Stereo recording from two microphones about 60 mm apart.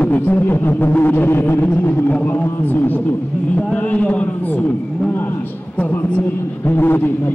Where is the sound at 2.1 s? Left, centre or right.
Left.